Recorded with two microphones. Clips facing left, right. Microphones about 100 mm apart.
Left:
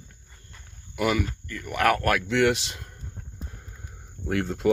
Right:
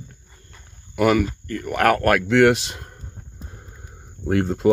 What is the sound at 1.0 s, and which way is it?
Speech, 50° right (ahead or behind).